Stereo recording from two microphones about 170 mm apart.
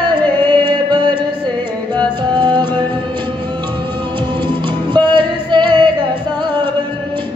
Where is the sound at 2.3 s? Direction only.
25° right (ahead or behind).